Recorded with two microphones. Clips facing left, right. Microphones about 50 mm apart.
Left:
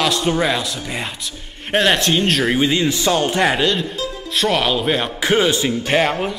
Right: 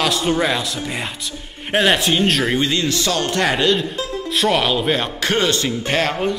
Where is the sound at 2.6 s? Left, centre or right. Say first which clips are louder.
Left 2 dB; centre.